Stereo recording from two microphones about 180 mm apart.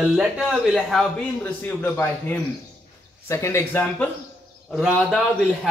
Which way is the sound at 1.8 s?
10° left (ahead or behind).